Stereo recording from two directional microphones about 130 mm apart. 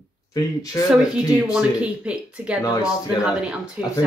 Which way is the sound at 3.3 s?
10° right (ahead or behind).